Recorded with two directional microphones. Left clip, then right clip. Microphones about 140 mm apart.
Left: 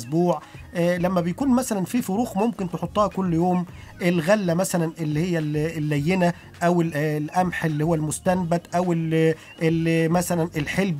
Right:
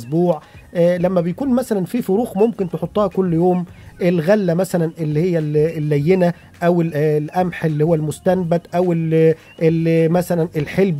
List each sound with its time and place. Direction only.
0.1 s speech: 30° right (ahead or behind)